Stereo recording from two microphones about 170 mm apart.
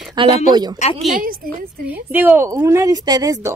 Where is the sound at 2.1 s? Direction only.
10° right (ahead or behind).